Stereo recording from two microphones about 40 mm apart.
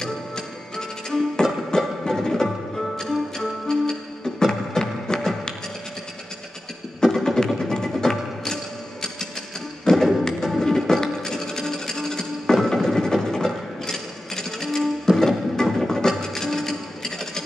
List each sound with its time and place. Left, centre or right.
0.0 s music: centre
7.4 s music: centre
9.8 s music: centre
15.9 s music: centre